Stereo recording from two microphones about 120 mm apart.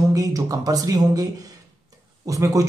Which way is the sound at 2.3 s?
25° right (ahead or behind).